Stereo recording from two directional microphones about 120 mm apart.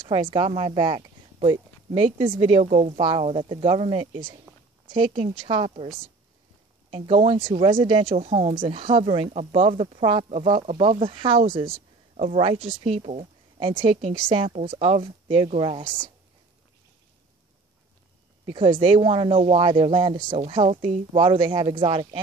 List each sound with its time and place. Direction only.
0.0 s speech: 45° right (ahead or behind)
2.6 s a woman's voice: 80° right
3.0 s speech: 45° right (ahead or behind)
5.5 s speech: 50° right (ahead or behind)
6.9 s speech: 50° right (ahead or behind)
15.4 s speech: 50° right (ahead or behind)
18.5 s speech: 45° right (ahead or behind)